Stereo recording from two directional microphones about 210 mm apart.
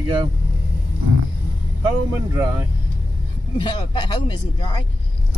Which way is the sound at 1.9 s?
15° right (ahead or behind).